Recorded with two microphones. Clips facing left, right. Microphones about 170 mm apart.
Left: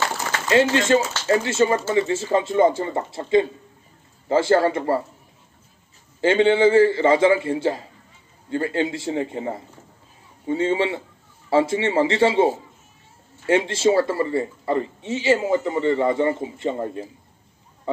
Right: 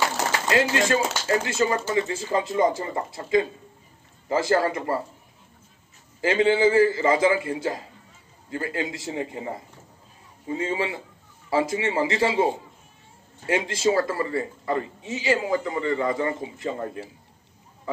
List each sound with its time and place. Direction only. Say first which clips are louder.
0.5 s speech: left 6 dB; 25° left (ahead or behind)
6.2 s speech: left 4 dB; 30° left (ahead or behind)
13.5 s speech: left 4 dB; 30° left (ahead or behind)